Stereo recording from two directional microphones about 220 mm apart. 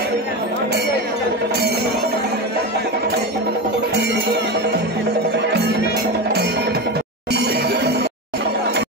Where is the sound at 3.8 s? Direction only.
50° right (ahead or behind).